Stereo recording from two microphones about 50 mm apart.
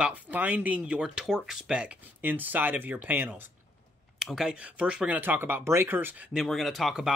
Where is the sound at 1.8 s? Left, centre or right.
Right.